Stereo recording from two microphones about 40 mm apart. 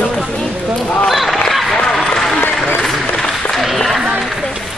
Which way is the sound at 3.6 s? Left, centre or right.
Centre.